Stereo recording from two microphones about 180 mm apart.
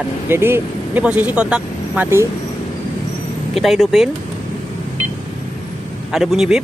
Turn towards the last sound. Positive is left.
turn(degrees=0)  # may be behind; listen again after turning